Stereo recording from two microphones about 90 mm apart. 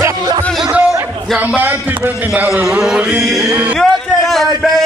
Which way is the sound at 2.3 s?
20° right (ahead or behind).